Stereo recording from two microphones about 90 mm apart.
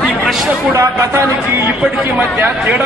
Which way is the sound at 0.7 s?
20° right (ahead or behind).